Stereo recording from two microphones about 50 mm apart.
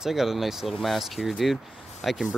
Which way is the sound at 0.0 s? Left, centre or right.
Centre.